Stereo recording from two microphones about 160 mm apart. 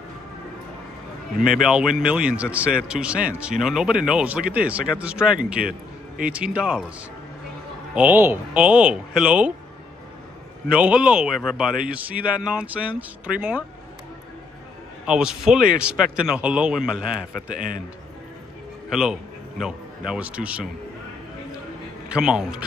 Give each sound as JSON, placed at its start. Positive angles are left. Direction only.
{"t": 1.5, "sound": "speech", "side_deg": -5}
{"t": 7.9, "sound": "speech", "side_deg": -10}
{"t": 10.7, "sound": "a man's voice", "side_deg": -10}
{"t": 15.0, "sound": "a man's voice", "side_deg": -5}
{"t": 17.6, "sound": "a man's voice", "side_deg": -60}
{"t": 18.9, "sound": "a man's voice", "side_deg": -5}
{"t": 22.1, "sound": "a man's voice", "side_deg": -5}